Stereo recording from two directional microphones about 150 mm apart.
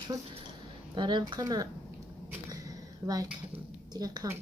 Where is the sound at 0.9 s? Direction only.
30° right (ahead or behind).